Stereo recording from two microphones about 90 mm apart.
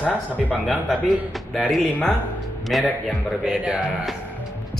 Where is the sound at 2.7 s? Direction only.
Centre (ahead or behind).